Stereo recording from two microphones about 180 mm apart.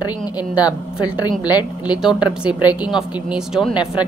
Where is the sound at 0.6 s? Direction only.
20° left (ahead or behind).